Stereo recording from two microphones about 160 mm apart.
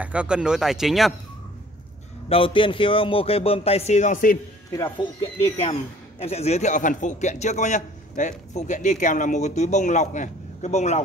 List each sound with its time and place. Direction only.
0.0 s speech: 5° right (ahead or behind)
2.2 s speech: 35° left (ahead or behind); by 4.4 s 55° left (ahead or behind)
4.7 s speech: 30° left (ahead or behind)
5.4 s a man's voice: 40° left (ahead or behind)